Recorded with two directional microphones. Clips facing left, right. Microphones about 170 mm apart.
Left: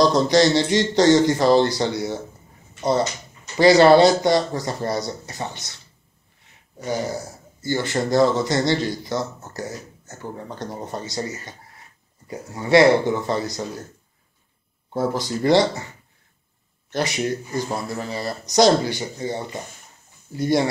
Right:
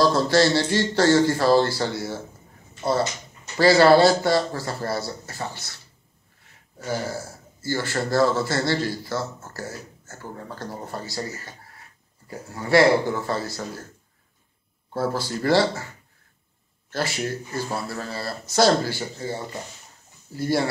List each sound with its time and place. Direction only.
0.0 s speech: 20° left (ahead or behind)
3.5 s a man's voice: 20° left (ahead or behind)
6.8 s a man's voice: 20° left (ahead or behind)
14.9 s speech: 15° left (ahead or behind)
16.9 s a man's voice: 20° left (ahead or behind)